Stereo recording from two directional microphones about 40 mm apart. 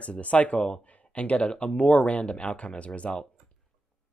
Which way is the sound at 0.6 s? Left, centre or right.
Left.